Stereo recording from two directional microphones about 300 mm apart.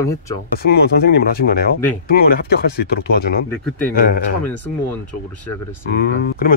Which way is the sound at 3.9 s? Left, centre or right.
Left.